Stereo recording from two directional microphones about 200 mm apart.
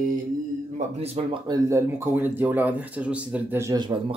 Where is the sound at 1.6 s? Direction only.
15° right (ahead or behind).